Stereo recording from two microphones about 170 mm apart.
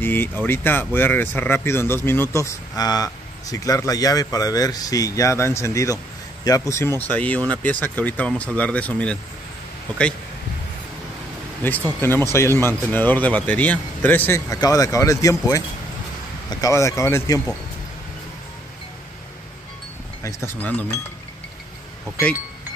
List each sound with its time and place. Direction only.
0.0 s speech: 10° left (ahead or behind)
11.6 s speech: 15° left (ahead or behind)
20.2 s speech: 15° left (ahead or behind)